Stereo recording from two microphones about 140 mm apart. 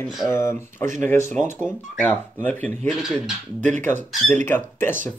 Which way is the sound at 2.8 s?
5° right (ahead or behind).